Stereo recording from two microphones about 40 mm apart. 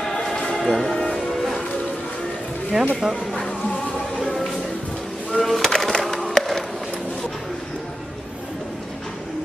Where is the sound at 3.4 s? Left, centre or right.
Left.